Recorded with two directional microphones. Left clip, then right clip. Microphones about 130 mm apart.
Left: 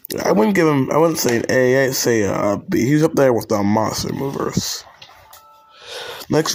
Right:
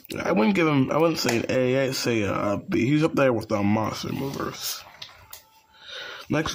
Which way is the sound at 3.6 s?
5° left (ahead or behind).